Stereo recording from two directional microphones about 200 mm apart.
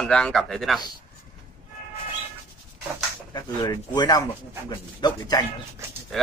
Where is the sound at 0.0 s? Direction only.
5° left (ahead or behind).